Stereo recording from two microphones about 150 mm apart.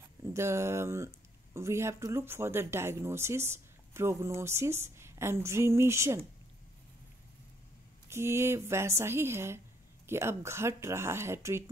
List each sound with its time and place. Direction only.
0.2 s a woman's voice: 20° right (ahead or behind)
8.1 s speech: 15° right (ahead or behind)